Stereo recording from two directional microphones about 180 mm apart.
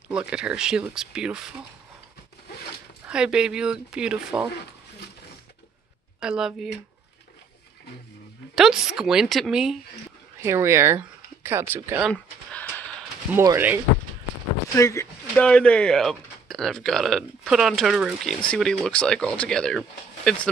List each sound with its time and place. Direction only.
0.1 s speech: 5° right (ahead or behind)
3.1 s speech: 5° right (ahead or behind)
6.1 s speech: 5° right (ahead or behind)
8.5 s speech: centre (ahead or behind)
10.4 s speech: 15° right (ahead or behind)
12.1 s a sound: 10° left (ahead or behind)
13.3 s speech: 15° right (ahead or behind)
14.8 s a sound: 15° left (ahead or behind)
15.4 s speech: 5° left (ahead or behind)